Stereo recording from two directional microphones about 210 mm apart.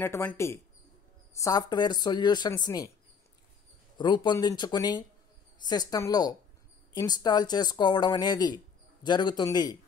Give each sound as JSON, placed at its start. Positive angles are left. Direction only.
{"t": 0.0, "sound": "speech", "side_deg": 10}
{"t": 4.0, "sound": "speech", "side_deg": 20}